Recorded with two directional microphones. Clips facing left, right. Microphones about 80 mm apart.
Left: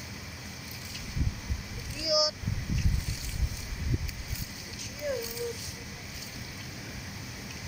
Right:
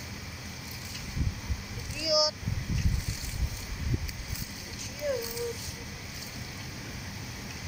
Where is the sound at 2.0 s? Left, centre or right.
Left.